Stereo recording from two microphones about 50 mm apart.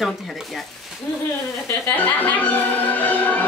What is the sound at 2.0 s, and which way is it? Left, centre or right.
Speech, left.